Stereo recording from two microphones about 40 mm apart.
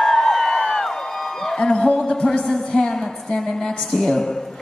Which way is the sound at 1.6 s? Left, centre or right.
Left.